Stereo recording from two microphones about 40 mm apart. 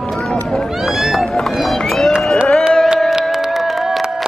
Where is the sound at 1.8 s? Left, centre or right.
Centre.